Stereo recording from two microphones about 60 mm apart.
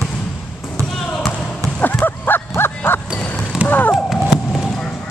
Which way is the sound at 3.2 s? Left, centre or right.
Centre.